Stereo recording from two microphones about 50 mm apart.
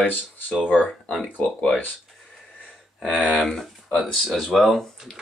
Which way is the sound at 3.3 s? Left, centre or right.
Centre.